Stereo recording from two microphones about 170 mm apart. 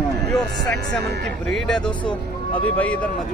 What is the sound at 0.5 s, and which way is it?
Speech, 70° right (ahead or behind).